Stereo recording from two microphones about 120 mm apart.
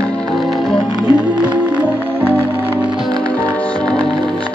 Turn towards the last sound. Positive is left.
turn(degrees=5)  # may be behind; listen again after turning